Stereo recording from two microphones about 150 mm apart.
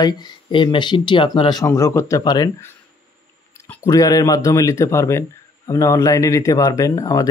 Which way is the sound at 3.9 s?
25° left (ahead or behind).